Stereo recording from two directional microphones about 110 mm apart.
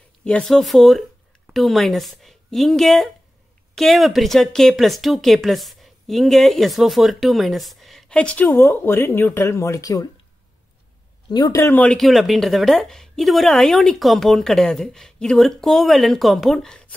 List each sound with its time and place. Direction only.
0.2 s speech: 5° left (ahead or behind); by 10.0 s 30° left (ahead or behind)
11.2 s speech: 40° left (ahead or behind)
11.5 s speech: 25° left (ahead or behind)
11.8 s speech: 5° left (ahead or behind)